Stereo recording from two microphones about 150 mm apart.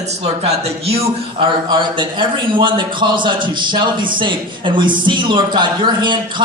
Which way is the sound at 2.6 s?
30° right (ahead or behind).